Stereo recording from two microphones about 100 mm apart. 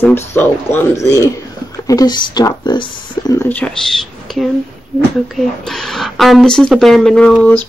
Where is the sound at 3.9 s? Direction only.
Centre (ahead or behind).